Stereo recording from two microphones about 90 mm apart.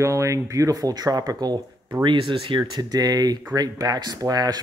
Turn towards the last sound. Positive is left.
turn(degrees=-45)  # may be behind; listen again after turning